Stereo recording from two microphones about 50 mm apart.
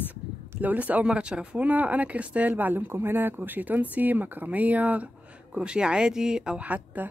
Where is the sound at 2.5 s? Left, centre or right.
Right.